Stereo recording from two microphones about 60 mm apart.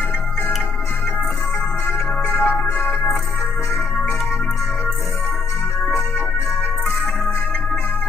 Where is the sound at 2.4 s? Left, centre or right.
Left.